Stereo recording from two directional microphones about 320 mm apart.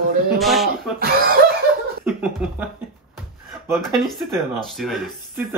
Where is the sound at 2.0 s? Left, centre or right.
Centre.